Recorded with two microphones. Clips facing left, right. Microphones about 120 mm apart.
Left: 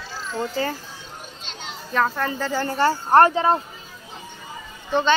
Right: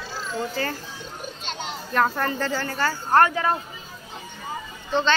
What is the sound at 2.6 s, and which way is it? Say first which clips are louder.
Speech: left 5 dB; 25° left (ahead or behind).